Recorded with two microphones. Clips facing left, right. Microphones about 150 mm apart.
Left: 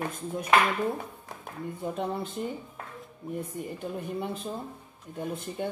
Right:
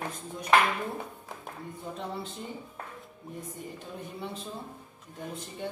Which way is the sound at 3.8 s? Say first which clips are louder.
Left 8 dB; 55° left (ahead or behind).